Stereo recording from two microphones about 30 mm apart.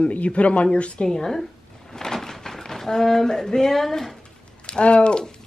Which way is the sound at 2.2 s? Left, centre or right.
Centre.